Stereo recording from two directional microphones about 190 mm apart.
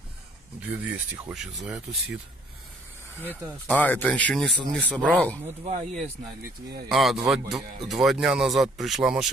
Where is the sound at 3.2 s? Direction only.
10° left (ahead or behind).